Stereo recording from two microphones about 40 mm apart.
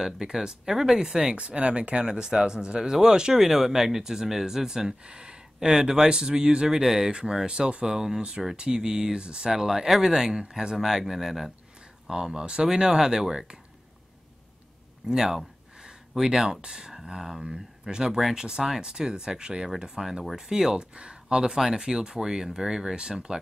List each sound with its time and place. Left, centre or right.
0.0 s speech: centre
1.3 s speech: right
2.0 s speech: centre
9.5 s speech: centre
15.1 s a sound: centre
16.4 s speech: right
20.9 s speech: right; by 22.9 s centre